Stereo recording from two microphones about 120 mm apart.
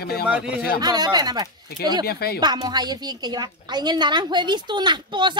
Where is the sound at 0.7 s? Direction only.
35° right (ahead or behind).